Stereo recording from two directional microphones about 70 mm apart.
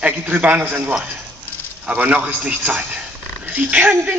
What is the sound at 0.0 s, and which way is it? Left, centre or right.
A man's voice, centre.